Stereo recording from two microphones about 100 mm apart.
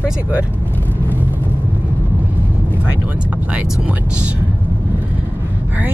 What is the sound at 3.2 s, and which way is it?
Speech, 15° right (ahead or behind).